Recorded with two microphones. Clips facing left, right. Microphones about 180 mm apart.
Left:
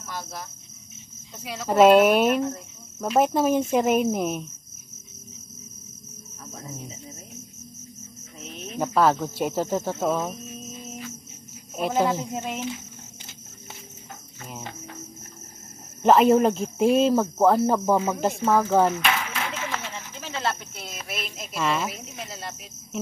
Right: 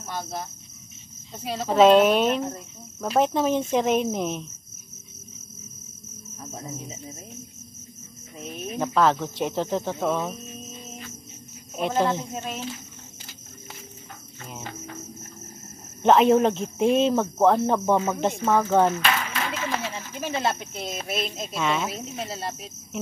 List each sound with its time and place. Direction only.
0.0 s speech: 25° right (ahead or behind)
1.4 s cricket: 30° right (ahead or behind)
1.7 s speech: 10° left (ahead or behind)
8.4 s cricket: 10° right (ahead or behind)
8.7 s speech: 10° left (ahead or behind)
16.0 s speech: 5° left (ahead or behind)
20.2 s speech: 15° right (ahead or behind)
21.5 s speech: centre (ahead or behind)
21.9 s cricket: 30° right (ahead or behind)